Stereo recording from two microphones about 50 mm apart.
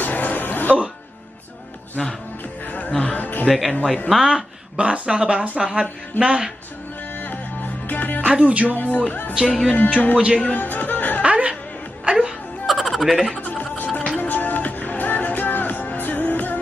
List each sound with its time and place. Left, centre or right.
0.0 s music: left
2.0 s speech: centre
2.6 s music: left
3.4 s speech: centre
4.7 s a woman's voice: right
7.2 s music: left
8.3 s speech: right
8.7 s speech: left
9.3 s a woman's voice: centre
10.5 s music: left
11.2 s music: right
12.6 s music: centre
13.4 s music: left
13.8 s music: centre; by 16.5 s left